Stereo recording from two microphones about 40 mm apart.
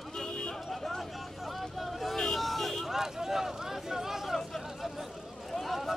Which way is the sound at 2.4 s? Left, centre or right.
Centre.